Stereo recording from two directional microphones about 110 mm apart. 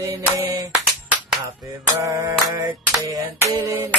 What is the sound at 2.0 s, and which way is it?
A man's voice, 30° right (ahead or behind).